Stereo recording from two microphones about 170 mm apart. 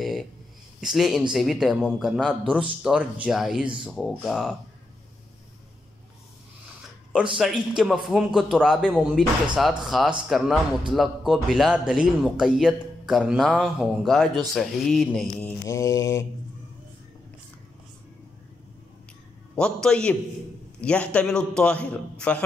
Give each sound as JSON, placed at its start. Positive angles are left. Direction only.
{"t": 0.7, "sound": "a man's voice", "side_deg": 0}
{"t": 7.3, "sound": "a man's voice", "side_deg": -5}
{"t": 15.6, "sound": "a man's voice", "side_deg": 15}
{"t": 19.5, "sound": "a man's voice", "side_deg": 5}